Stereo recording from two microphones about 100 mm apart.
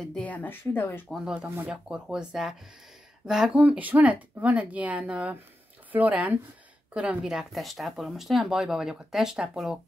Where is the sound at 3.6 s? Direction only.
15° right (ahead or behind).